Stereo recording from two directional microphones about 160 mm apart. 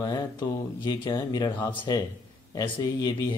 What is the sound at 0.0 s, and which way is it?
Speech, 25° left (ahead or behind).